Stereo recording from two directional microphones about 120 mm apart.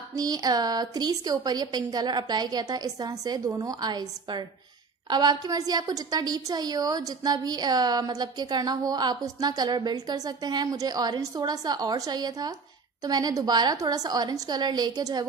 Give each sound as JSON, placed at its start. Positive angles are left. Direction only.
{"t": 0.1, "sound": "a woman's voice", "side_deg": -30}